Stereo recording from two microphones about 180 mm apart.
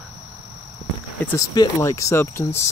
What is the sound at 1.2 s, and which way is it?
Speech, 20° left (ahead or behind).